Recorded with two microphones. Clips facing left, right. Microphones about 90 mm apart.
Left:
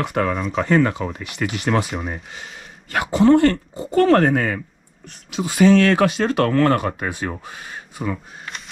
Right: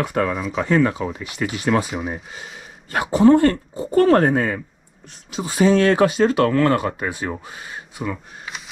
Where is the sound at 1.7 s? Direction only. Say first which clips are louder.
Right 1 dB; centre (ahead or behind).